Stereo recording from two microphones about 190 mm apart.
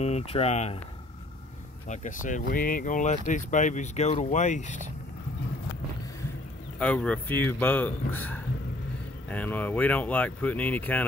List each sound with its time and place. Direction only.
0.0 s speech: 35° left (ahead or behind)
1.9 s speech: 40° left (ahead or behind)
6.8 s speech: 5° left (ahead or behind)